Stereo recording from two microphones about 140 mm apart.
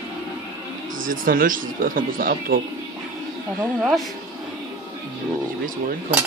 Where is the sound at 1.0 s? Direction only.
80° right.